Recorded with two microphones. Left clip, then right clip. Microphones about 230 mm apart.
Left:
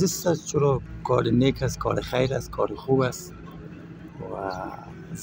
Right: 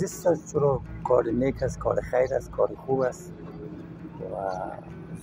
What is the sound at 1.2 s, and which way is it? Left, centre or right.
Speech, left.